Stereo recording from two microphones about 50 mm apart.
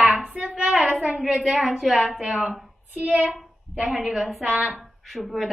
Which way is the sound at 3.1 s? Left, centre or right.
Right.